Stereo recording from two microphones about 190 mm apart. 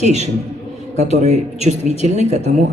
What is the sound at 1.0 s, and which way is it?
Speech, 35° right (ahead or behind).